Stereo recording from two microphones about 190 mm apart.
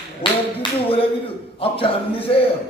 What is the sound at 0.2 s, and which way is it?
A man's voice, 30° left (ahead or behind).